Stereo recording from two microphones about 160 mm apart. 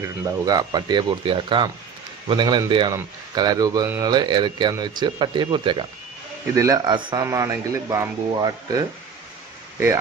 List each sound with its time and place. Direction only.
0.0 s speech: 20° right (ahead or behind)
6.5 s speech: 20° right (ahead or behind)